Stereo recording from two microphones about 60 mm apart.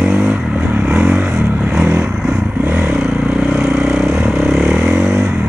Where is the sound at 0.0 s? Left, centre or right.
Right.